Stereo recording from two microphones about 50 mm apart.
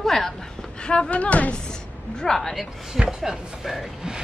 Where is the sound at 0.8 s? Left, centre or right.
Left.